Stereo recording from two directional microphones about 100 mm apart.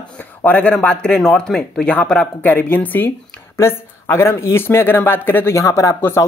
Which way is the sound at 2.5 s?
20° left (ahead or behind).